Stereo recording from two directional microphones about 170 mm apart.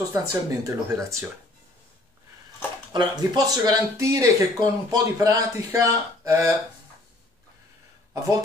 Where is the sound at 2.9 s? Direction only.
25° right (ahead or behind).